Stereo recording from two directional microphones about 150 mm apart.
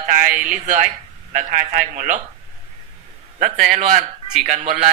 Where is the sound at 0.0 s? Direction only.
60° right (ahead or behind).